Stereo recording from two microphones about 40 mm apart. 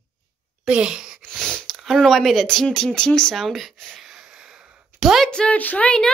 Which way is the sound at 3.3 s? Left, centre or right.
Centre.